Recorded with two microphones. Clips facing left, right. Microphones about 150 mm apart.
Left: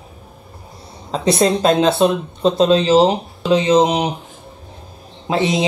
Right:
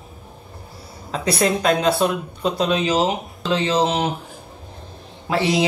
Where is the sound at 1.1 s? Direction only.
25° left (ahead or behind).